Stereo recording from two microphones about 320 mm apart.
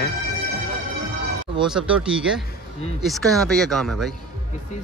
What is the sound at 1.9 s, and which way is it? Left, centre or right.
Speech, centre.